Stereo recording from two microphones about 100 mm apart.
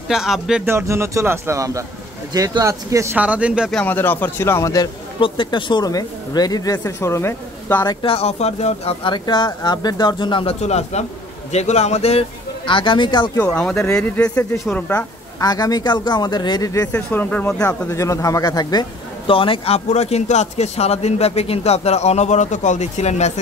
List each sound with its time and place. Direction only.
0.1 s speech: 5° right (ahead or behind)
0.7 s a man's voice: 25° right (ahead or behind)
3.2 s speech: 15° right (ahead or behind)
3.7 s speech: 20° left (ahead or behind)
5.2 s a woman's voice: 55° left (ahead or behind); by 7.8 s 25° left (ahead or behind)
8.0 s speech: 80° left
9.1 s speech: 50° left (ahead or behind)
10.4 s speech: 90° left; by 13.3 s 50° left (ahead or behind)
13.5 s speech: 10° left (ahead or behind)
15.4 s speech: 40° left (ahead or behind)
16.9 s speech: 20° left (ahead or behind)
17.6 s a woman's voice: 30° left (ahead or behind)
19.2 s speech: 60° left (ahead or behind); by 22.3 s 90° left